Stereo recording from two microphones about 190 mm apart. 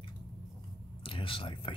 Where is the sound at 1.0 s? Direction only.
30° left (ahead or behind).